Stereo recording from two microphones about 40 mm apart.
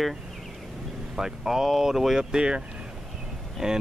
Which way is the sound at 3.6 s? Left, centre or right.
Centre.